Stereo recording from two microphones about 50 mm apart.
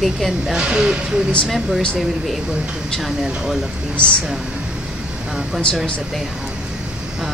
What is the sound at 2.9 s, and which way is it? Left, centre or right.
Speech, centre.